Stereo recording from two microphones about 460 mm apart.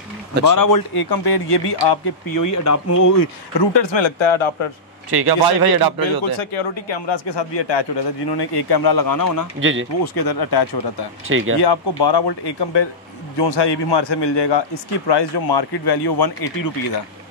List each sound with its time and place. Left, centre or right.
0.5 s speech: left
3.7 s speech: left
5.1 s speech: right
6.5 s speech: left
9.6 s speech: right
10.0 s speech: left
11.2 s speech: right
11.6 s speech: left